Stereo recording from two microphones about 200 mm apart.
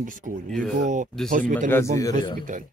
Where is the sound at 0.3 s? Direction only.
40° right (ahead or behind).